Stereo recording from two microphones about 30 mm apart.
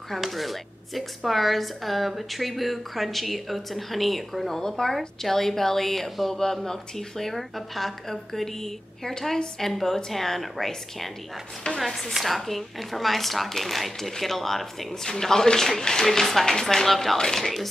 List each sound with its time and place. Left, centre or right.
0.3 s speech: centre
4.6 s speech: centre
6.4 s speech: centre
11.8 s speech: centre